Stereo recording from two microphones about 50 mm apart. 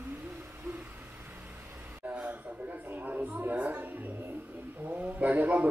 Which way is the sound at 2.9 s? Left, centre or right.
Right.